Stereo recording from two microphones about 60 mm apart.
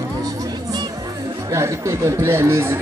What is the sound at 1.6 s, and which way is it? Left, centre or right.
A man's voice, right.